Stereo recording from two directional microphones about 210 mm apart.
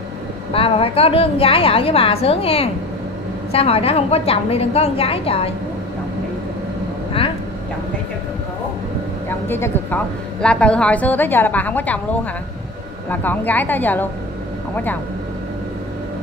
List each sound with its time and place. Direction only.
0.5 s a woman's voice: 25° left (ahead or behind)
9.5 s a woman's voice: 10° left (ahead or behind)
13.1 s a woman's voice: 10° left (ahead or behind)